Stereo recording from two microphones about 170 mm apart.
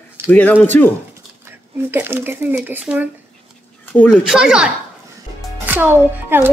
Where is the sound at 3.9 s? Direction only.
5° left (ahead or behind).